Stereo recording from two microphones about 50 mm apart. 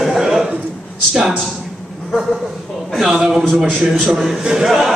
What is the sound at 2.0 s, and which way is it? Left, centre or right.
A man's voice, centre.